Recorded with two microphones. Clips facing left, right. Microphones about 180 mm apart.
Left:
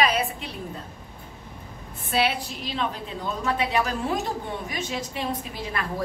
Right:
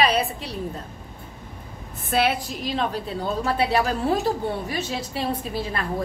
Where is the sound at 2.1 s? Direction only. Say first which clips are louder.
Right 2 dB; 50° right (ahead or behind).